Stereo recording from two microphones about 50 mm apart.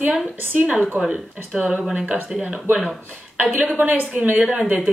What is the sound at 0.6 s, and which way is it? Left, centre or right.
Speech, right.